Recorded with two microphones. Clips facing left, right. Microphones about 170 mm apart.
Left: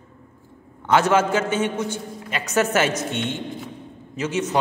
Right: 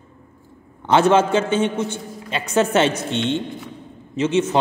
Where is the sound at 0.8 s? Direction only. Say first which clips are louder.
Right 3 dB; 30° right (ahead or behind).